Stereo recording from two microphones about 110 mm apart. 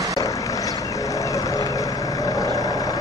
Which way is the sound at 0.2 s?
30° left (ahead or behind).